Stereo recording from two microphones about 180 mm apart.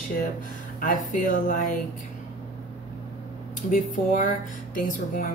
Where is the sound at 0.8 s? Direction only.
50° left (ahead or behind).